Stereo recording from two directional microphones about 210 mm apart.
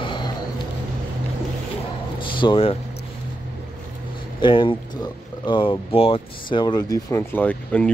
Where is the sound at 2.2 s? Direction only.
25° left (ahead or behind).